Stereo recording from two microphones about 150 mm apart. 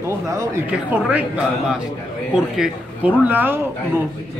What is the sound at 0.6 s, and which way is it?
A man's voice, 10° right (ahead or behind).